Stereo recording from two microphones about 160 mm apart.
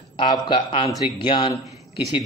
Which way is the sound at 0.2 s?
30° left (ahead or behind).